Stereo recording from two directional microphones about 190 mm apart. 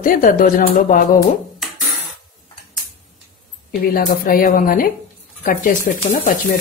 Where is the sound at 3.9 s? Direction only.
50° left (ahead or behind).